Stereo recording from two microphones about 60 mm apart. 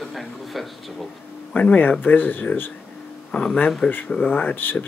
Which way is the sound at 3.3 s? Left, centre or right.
Centre.